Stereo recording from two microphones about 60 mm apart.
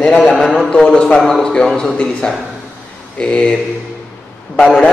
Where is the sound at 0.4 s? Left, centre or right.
Centre.